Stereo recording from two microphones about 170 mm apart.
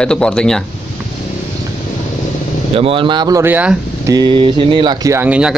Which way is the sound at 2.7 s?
35° right (ahead or behind).